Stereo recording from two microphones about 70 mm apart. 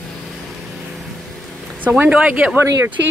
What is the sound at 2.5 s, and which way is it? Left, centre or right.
Speech, right.